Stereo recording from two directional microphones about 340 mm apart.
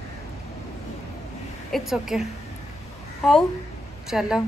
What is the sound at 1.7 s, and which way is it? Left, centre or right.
A woman's voice, centre.